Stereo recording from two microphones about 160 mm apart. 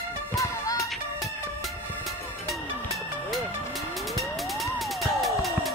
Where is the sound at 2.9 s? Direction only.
Centre (ahead or behind).